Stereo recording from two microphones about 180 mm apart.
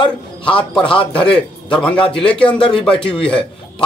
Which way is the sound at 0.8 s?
30° left (ahead or behind).